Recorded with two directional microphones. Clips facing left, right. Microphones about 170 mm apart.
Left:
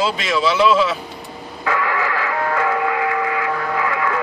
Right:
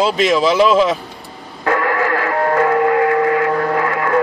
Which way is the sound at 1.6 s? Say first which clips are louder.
Right 4 dB; 45° right (ahead or behind).